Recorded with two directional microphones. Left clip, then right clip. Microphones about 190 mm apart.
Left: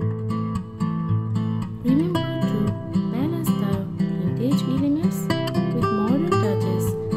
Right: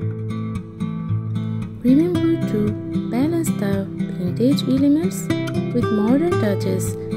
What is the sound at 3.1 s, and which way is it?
Music, 30° right (ahead or behind).